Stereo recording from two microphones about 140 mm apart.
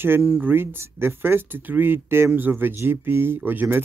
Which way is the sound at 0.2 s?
10° right (ahead or behind).